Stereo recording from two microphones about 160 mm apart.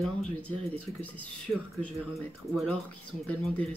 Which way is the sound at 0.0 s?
5° left (ahead or behind).